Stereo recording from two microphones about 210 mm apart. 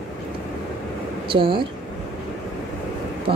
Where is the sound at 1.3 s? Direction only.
25° right (ahead or behind).